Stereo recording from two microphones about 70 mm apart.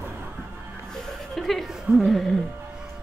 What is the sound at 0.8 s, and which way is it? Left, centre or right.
Chuckle, centre.